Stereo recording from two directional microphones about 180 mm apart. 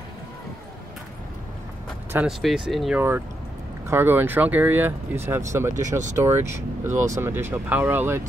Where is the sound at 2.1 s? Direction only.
Centre (ahead or behind).